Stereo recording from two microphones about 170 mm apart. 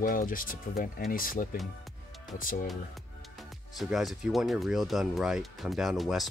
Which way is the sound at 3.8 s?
Centre (ahead or behind).